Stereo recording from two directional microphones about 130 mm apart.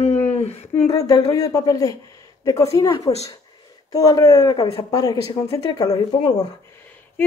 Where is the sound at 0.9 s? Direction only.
25° left (ahead or behind).